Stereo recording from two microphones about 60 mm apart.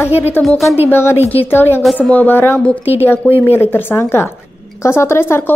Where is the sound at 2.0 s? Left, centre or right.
Left.